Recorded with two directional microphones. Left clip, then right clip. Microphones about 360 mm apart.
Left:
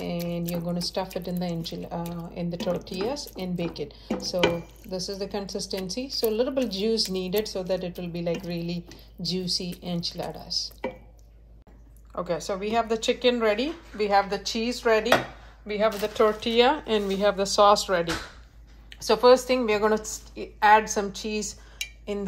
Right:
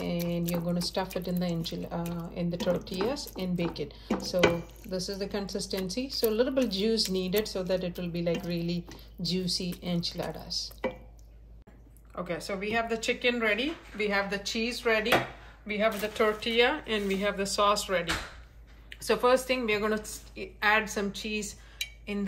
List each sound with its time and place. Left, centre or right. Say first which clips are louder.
0.0 s speech: left 1 dB; centre
12.3 s speech: left 4 dB; centre
18.9 s speech: left 7 dB; centre
21.7 s a sound: left 3 dB; centre